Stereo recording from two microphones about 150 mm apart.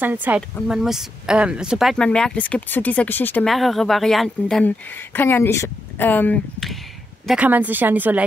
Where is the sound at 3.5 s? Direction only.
Centre (ahead or behind).